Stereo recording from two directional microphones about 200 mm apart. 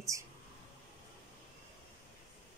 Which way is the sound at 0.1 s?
15° right (ahead or behind).